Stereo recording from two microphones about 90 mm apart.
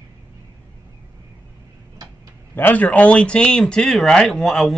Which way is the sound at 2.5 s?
20° left (ahead or behind).